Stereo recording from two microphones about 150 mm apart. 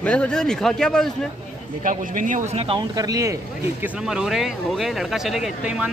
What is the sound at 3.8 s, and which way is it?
Speech, 5° right (ahead or behind).